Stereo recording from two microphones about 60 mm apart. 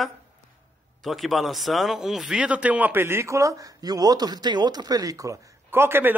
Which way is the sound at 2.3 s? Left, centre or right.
Centre.